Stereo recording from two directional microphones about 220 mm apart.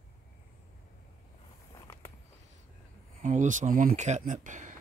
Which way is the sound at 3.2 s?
35° right (ahead or behind).